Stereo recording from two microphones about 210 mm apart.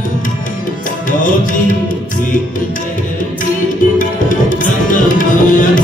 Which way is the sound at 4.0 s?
40° left (ahead or behind).